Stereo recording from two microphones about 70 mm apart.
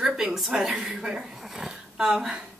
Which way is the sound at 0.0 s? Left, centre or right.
Centre.